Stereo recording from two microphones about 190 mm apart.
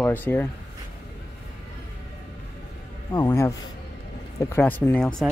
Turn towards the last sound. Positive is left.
turn(degrees=10)  # may be behind; listen again after turning